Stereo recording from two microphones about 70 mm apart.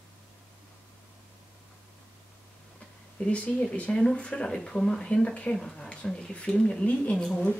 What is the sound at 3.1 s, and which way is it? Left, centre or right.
Speech, centre.